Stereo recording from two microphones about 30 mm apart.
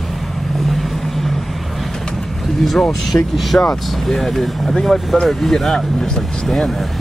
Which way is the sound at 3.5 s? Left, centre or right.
Left.